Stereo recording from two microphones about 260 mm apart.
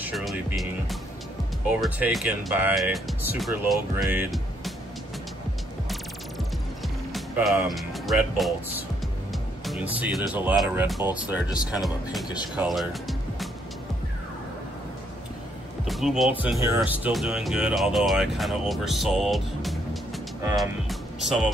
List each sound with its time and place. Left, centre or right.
0.0 s speech: centre
7.2 s speech: centre
9.3 s music: centre
10.3 s speech: centre
12.5 s music: centre
15.9 s speech: centre
20.5 s music: centre